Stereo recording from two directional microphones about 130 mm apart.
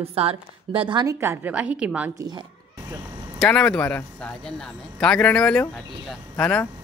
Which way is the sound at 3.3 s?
5° left (ahead or behind).